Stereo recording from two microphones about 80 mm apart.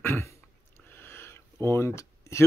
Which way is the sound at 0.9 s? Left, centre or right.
Left.